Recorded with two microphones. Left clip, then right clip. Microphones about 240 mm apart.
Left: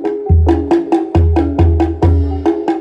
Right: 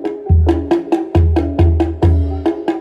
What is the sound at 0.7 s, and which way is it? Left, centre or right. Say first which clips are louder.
Music: left 2 dB; left.